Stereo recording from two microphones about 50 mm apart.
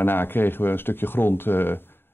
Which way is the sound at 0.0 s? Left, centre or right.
Left.